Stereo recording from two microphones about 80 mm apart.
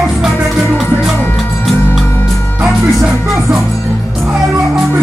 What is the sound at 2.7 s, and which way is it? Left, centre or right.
Music, centre.